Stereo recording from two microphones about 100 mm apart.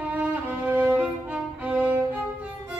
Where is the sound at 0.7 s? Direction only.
15° right (ahead or behind).